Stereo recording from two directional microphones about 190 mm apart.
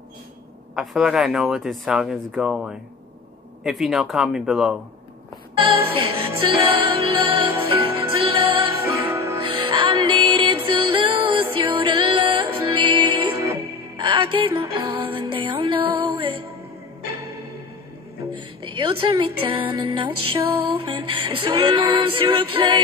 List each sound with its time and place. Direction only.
0.7 s speech: centre (ahead or behind)
5.9 s music: 25° right (ahead or behind)
8.9 s music: 15° right (ahead or behind)
9.4 s music: 25° right (ahead or behind)
18.3 s a woman's voice: 25° right (ahead or behind)
20.7 s music: 25° right (ahead or behind)